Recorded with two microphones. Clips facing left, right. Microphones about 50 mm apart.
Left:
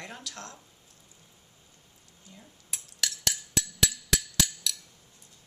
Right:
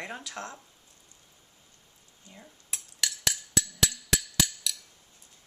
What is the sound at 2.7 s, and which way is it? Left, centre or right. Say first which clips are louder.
Cutlery: even; centre.